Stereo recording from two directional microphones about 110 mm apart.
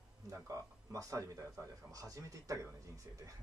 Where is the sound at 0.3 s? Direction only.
30° right (ahead or behind).